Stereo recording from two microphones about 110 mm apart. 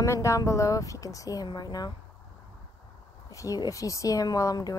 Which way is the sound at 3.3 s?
30° left (ahead or behind).